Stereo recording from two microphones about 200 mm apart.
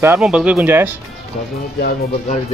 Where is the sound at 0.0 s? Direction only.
10° right (ahead or behind).